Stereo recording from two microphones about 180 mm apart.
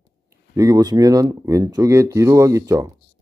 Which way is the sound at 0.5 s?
20° right (ahead or behind).